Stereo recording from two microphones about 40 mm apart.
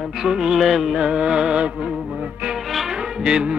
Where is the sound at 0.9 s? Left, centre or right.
Centre.